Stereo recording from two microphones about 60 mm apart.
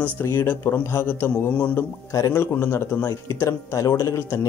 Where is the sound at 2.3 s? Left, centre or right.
Left.